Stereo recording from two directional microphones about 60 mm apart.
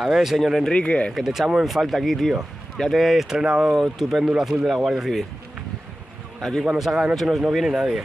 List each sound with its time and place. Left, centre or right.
0.0 s speech: centre
0.7 s speech: centre
1.1 s speech: centre
6.6 s speech: centre